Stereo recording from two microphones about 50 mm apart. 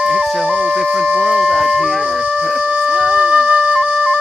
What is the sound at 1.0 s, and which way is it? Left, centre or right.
Speech, centre.